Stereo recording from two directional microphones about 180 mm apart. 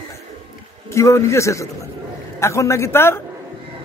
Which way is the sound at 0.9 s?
15° left (ahead or behind).